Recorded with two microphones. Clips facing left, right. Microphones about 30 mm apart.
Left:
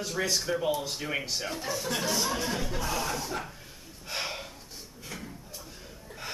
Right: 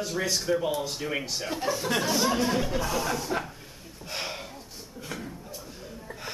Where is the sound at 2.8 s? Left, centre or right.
Centre.